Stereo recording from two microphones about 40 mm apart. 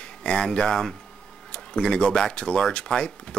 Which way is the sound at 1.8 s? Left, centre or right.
Left.